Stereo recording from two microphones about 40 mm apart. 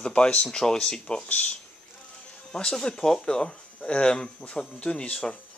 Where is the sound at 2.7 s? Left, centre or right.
Centre.